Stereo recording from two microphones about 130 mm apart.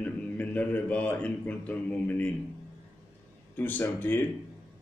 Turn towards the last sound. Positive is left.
turn(degrees=15)  # may be behind; listen again after turning